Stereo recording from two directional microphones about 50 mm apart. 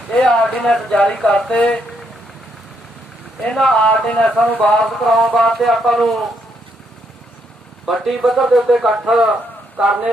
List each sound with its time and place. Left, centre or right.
0.1 s a sound: centre
0.6 s speech: centre
1.2 s speech: left
3.7 s speech: left
4.1 s speech: centre
4.8 s speech: centre
7.8 s speech: centre